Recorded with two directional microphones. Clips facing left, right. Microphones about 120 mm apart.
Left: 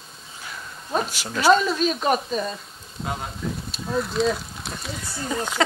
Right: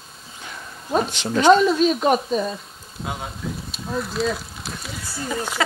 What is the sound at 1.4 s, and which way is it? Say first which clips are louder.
Speech: right 4 dB; 20° right (ahead or behind).